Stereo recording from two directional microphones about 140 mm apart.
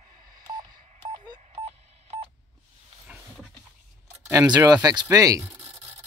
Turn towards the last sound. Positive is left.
turn(degrees=-25)  # may be behind; listen again after turning